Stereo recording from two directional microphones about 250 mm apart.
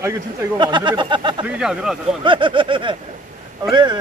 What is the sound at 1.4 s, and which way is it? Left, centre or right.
Speech, centre.